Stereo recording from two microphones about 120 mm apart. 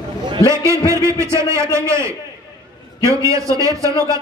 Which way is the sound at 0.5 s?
25° right (ahead or behind).